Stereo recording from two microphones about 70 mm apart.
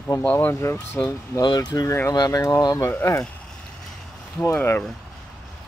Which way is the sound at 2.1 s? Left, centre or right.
Left.